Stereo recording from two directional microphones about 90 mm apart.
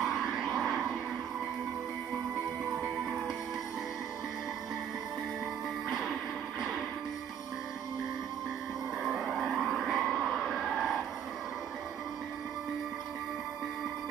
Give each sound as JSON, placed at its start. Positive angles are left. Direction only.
{"t": 0.0, "sound": "vehicle", "side_deg": -5}
{"t": 5.9, "sound": "music", "side_deg": -5}
{"t": 9.0, "sound": "a sound", "side_deg": -5}